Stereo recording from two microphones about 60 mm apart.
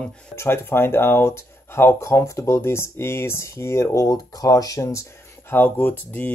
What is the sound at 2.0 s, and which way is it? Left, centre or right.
Speech, left.